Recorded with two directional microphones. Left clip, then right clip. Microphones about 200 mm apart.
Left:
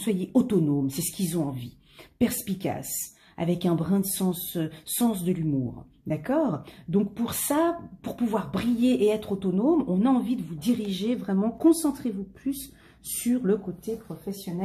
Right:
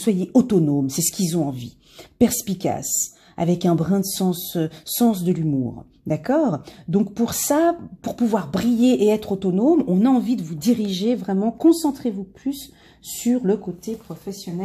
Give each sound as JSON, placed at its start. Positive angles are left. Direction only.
{"t": 0.0, "sound": "speech", "side_deg": -35}
{"t": 14.3, "sound": "speech", "side_deg": -40}